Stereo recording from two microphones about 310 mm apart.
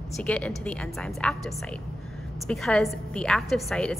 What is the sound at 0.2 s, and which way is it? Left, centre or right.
A woman's voice, centre.